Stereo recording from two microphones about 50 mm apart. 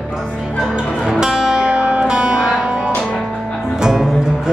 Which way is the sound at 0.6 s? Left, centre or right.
Centre.